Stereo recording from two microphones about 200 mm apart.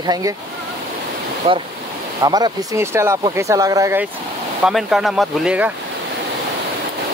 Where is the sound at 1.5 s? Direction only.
25° right (ahead or behind).